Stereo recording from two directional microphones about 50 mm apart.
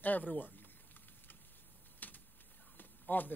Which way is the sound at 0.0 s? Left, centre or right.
Left.